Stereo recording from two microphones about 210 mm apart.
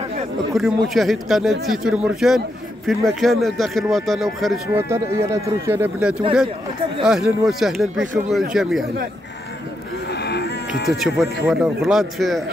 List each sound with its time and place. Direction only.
0.5 s speech: centre (ahead or behind)
4.7 s speech: 10° right (ahead or behind)
10.2 s livestock: 50° left (ahead or behind)
11.4 s speech: centre (ahead or behind)